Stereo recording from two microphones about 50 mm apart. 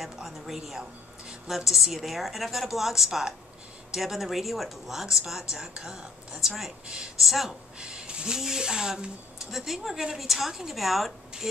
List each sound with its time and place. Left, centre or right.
0.0 s speech: centre
7.8 s a sound: centre
8.4 s speech: centre